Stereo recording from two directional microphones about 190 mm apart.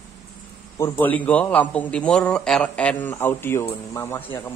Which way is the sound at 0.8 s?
10° left (ahead or behind).